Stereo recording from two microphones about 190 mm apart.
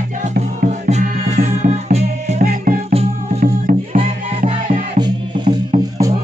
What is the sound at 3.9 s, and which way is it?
Music, 40° right (ahead or behind).